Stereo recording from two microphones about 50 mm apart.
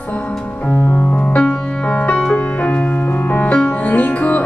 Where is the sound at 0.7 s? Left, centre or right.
Left.